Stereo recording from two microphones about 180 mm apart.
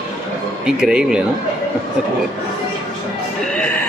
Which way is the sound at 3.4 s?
5° left (ahead or behind).